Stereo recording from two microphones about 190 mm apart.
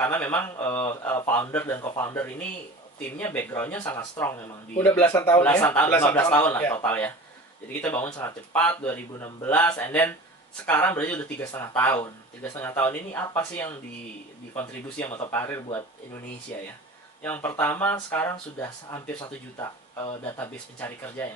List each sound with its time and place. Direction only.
0.0 s a man's voice: 10° left (ahead or behind)
17.2 s a man's voice: 10° left (ahead or behind)